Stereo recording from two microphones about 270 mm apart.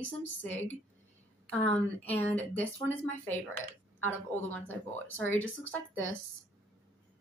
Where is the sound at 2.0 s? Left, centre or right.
Centre.